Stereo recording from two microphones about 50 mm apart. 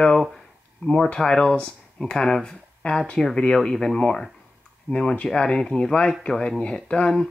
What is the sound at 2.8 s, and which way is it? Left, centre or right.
Speech, left.